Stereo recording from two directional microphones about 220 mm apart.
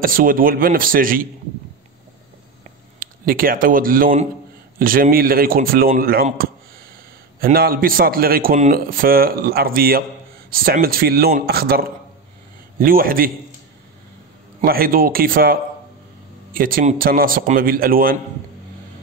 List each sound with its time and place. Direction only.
0.0 s a man's voice: 40° right (ahead or behind)
3.0 s a man's voice: 40° right (ahead or behind)
14.6 s a man's voice: 40° right (ahead or behind)